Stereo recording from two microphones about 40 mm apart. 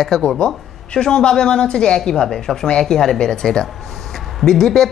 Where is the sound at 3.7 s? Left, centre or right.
Centre.